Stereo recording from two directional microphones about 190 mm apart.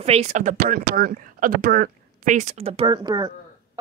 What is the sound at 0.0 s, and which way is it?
Speech, 35° right (ahead or behind).